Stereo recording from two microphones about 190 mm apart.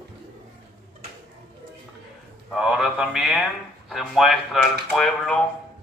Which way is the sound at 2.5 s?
Centre (ahead or behind).